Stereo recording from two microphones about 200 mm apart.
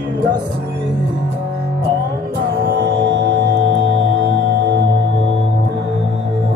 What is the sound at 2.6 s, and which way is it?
Music, 60° right (ahead or behind).